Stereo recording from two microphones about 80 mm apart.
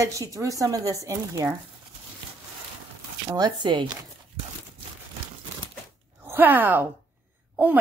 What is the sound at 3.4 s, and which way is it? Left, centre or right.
Speech, right.